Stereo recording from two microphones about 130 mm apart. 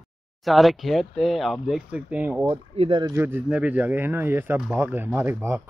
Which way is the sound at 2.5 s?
40° right (ahead or behind).